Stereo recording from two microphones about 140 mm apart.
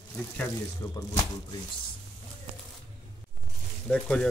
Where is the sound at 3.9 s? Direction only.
5° left (ahead or behind).